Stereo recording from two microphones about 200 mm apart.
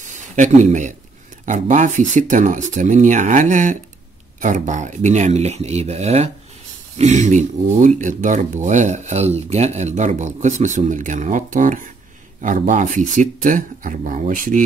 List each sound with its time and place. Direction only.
0.0 s speech: 40° right (ahead or behind)